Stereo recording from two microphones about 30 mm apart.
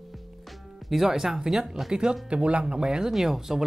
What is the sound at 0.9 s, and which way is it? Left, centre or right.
Speech, centre.